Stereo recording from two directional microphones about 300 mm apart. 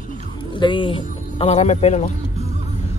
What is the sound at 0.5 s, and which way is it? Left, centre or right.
Speech, centre.